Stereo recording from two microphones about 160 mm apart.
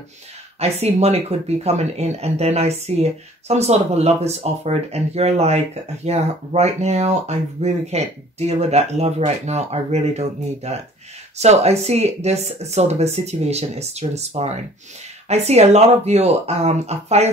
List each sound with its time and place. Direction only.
0.6 s speech: 40° right (ahead or behind)